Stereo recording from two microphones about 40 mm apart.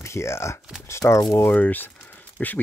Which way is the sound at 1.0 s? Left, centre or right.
Left.